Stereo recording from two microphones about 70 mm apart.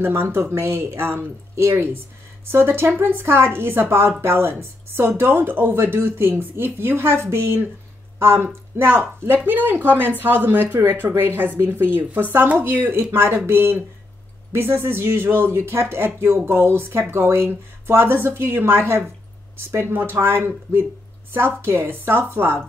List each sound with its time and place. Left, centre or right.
0.0 s speech: right